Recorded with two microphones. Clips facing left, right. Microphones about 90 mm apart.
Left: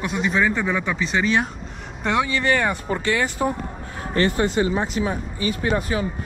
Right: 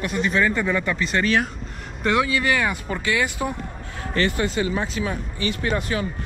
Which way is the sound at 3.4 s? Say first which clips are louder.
Left 4 dB; 50° left (ahead or behind).